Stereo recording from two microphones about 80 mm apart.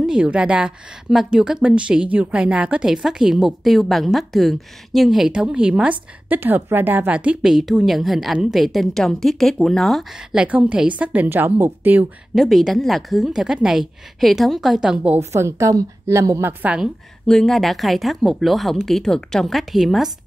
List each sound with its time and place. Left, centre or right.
0.0 s a woman's voice: centre
7.2 s a woman's voice: centre
10.3 s a woman's voice: centre
12.4 s a woman's voice: centre
15.3 s a woman's voice: right
17.3 s a woman's voice: centre